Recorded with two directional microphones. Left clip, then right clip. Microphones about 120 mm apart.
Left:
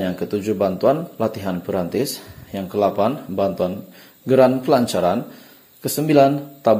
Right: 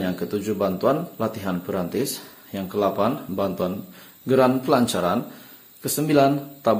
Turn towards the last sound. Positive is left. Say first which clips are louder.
# left 4 dB
turn(degrees=20)  # may be behind; listen again after turning